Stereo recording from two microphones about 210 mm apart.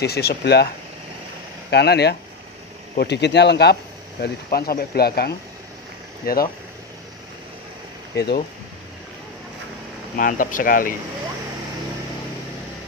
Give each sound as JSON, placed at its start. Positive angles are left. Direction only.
{"t": 0.0, "sound": "speech", "side_deg": 50}
{"t": 1.7, "sound": "speech", "side_deg": 50}
{"t": 8.2, "sound": "speech", "side_deg": 50}
{"t": 10.1, "sound": "speech", "side_deg": 40}